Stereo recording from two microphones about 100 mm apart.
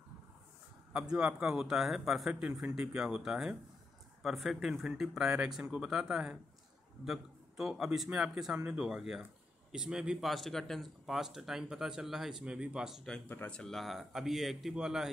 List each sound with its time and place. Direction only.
0.9 s a man's voice: 10° right (ahead or behind)
13.3 s speech: 20° left (ahead or behind)
13.6 s speech: 5° left (ahead or behind)